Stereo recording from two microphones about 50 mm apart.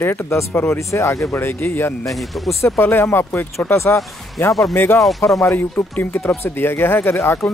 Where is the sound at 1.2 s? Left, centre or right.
Left.